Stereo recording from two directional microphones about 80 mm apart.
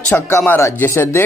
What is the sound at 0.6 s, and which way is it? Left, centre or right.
Speech, left.